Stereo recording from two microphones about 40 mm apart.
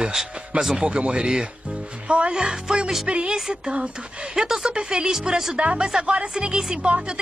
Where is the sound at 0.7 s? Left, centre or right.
Right.